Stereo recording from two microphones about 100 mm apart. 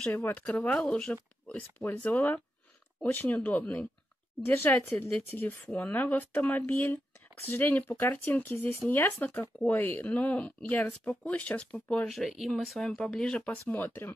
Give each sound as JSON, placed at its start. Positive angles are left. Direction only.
{"t": 0.1, "sound": "speech", "side_deg": 20}
{"t": 9.7, "sound": "speech", "side_deg": 20}